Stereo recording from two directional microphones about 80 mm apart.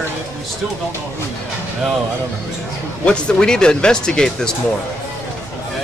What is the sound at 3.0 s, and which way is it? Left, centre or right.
Speech, centre.